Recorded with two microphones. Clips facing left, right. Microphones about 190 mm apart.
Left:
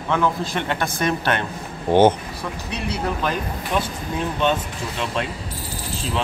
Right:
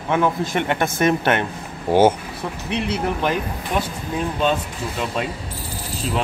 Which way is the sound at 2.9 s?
20° right (ahead or behind).